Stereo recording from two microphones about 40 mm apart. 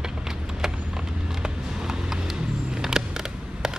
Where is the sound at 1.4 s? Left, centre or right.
Centre.